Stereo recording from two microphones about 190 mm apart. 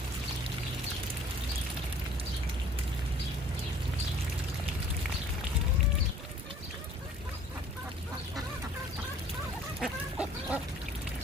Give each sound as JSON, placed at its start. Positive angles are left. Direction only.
{"t": 9.8, "sound": "chicken", "side_deg": -5}